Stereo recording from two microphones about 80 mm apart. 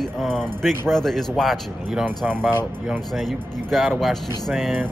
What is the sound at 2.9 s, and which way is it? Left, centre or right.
Speech, centre.